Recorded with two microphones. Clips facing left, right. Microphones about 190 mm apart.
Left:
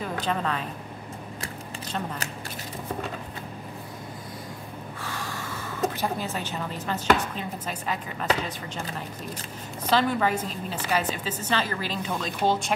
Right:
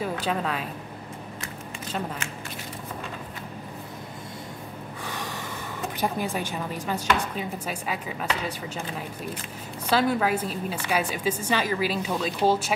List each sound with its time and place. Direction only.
0.0 s speech: 5° right (ahead or behind)
5.0 s gasp: 20° right (ahead or behind)
5.9 s a woman's voice: 15° right (ahead or behind)
9.8 s a woman's voice: 10° right (ahead or behind)